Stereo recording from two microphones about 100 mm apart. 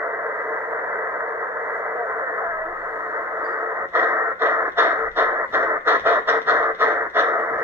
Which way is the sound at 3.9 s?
25° right (ahead or behind).